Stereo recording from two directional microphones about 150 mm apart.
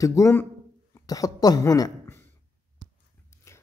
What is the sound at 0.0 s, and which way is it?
Speech, 20° left (ahead or behind).